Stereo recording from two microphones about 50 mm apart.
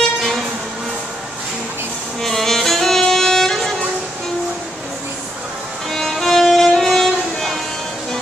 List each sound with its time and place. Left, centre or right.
0.2 s vehicle: centre
2.2 s music: centre
3.0 s violin: centre
5.9 s violin: centre